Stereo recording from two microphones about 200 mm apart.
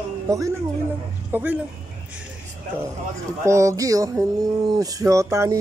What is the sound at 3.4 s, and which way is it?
Speech, 15° right (ahead or behind).